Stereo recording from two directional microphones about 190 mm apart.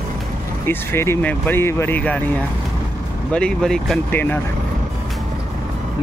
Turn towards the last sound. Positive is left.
turn(degrees=10)  # may be behind; listen again after turning